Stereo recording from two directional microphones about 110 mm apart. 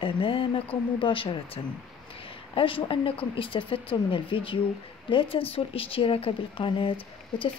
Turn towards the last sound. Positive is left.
turn(degrees=50)  # may be behind; listen again after turning